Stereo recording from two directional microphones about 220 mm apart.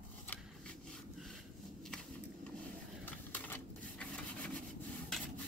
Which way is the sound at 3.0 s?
10° left (ahead or behind).